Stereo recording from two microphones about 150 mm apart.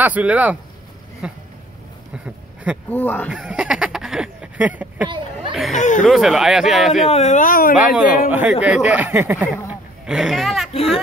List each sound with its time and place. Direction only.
0.0 s speech: 10° right (ahead or behind)
2.9 s speech: 10° left (ahead or behind)
3.3 s speech: 5° right (ahead or behind)
5.8 s speech: 55° left (ahead or behind)
6.0 s speech: centre (ahead or behind)
7.1 s speech: 50° left (ahead or behind); by 7.7 s 70° left (ahead or behind)
7.7 s speech: 10° right (ahead or behind)
10.7 s speech: 40° left (ahead or behind)